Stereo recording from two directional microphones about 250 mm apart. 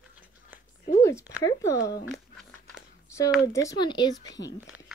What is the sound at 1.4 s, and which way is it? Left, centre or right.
Speech, centre.